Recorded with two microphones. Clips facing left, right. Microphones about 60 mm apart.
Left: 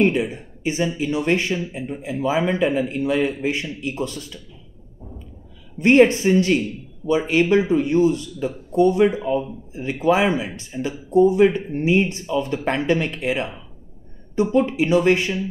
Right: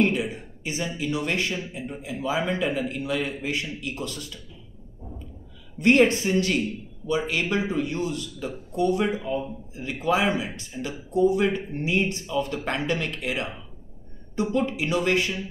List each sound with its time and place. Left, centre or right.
0.0 s a man's voice: left
5.8 s a man's voice: left